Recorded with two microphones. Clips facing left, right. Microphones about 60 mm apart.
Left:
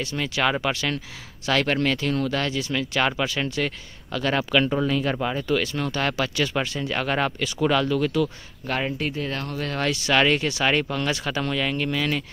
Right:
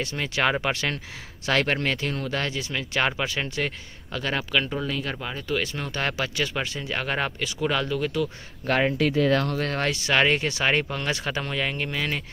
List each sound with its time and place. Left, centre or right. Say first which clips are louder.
0.0 s speech: left 1 dB; right
4.4 s speech: left 5 dB; centre
5.6 s speech: left 3 dB; centre
8.6 s speech: right 4 dB; right
8.9 s speech: right 7 dB; right
9.8 s speech: left 3 dB; right